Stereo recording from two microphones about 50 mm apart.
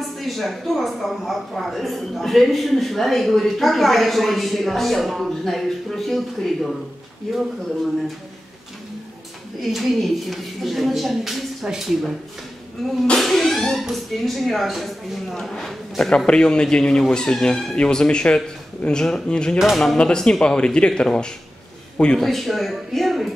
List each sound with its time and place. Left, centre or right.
0.0 s speech: centre
9.6 s speech: centre
15.5 s speech: centre
19.6 s speech: centre
20.0 s a man's voice: centre
22.2 s speech: centre